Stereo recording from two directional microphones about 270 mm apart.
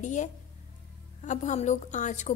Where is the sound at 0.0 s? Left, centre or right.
Left.